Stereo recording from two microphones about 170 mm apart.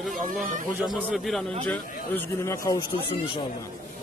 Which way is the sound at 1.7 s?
10° left (ahead or behind).